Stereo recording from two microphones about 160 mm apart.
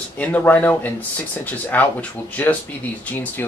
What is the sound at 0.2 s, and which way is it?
Speech, 10° left (ahead or behind).